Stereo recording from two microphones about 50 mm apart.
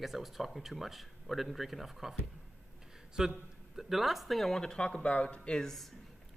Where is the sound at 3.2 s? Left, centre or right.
Centre.